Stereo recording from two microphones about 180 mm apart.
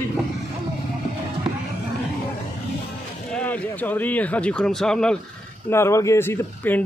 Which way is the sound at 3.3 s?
10° left (ahead or behind).